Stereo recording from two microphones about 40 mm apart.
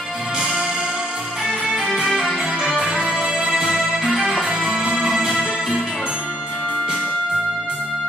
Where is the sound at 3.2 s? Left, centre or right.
Right.